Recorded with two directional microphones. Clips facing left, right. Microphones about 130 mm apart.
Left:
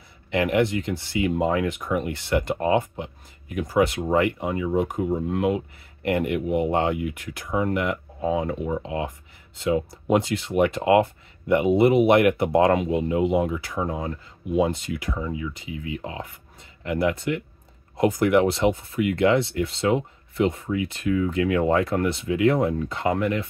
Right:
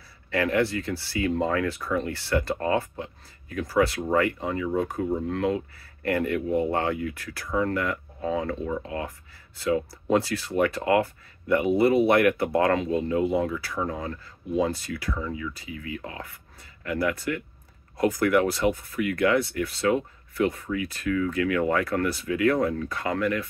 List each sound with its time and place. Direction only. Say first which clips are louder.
0.3 s speech: left 2 dB; 20° left (ahead or behind)